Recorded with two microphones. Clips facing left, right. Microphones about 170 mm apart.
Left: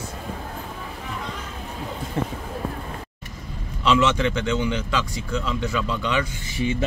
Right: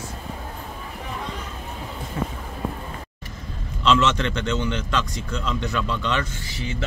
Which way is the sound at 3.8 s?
10° left (ahead or behind).